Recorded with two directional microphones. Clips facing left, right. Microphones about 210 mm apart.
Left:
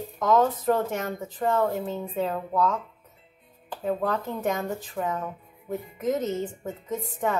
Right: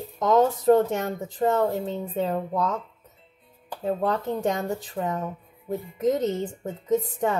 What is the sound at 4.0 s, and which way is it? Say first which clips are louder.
Speech: right 3 dB; 25° right (ahead or behind).